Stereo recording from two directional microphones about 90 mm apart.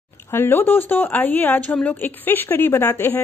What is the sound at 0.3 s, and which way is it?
A woman's voice, 25° left (ahead or behind).